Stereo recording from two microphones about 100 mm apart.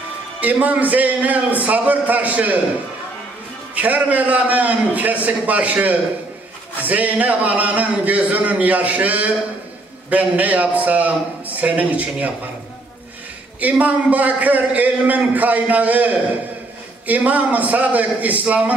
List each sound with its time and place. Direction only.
0.4 s a man's voice: 15° right (ahead or behind)
3.7 s a man's voice: 15° right (ahead or behind)
13.6 s a man's voice: 15° right (ahead or behind)